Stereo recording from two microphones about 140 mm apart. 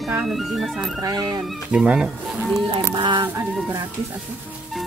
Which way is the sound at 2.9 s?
35° right (ahead or behind).